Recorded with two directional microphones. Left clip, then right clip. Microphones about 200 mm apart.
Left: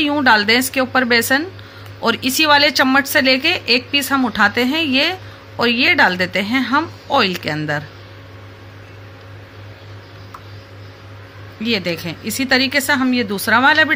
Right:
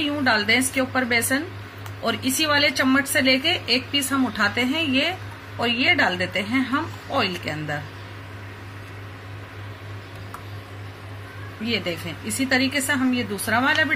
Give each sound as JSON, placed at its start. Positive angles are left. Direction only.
{"t": 0.0, "sound": "a woman's voice", "side_deg": 50}
{"t": 11.6, "sound": "a woman's voice", "side_deg": 50}